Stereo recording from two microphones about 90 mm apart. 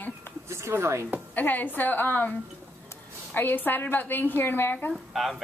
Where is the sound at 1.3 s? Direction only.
20° left (ahead or behind).